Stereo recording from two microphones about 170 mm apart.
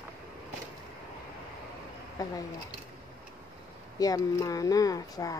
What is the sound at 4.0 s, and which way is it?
Speech, 20° left (ahead or behind).